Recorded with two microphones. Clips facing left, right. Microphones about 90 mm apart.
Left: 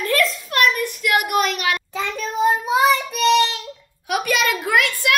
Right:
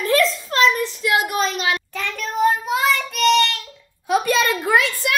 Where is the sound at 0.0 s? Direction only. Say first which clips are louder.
Right 2 dB; 25° right (ahead or behind).